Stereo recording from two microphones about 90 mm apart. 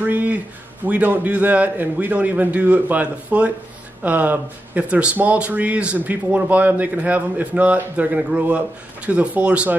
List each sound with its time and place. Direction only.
0.0 s speech: 20° right (ahead or behind)